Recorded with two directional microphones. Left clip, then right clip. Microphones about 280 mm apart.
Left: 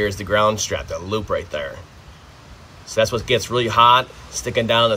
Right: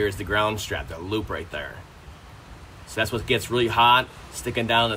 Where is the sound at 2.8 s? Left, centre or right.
Left.